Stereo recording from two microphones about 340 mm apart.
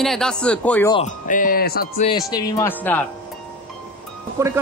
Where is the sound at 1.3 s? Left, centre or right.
Left.